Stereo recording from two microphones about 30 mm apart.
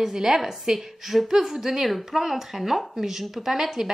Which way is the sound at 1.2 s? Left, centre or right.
Centre.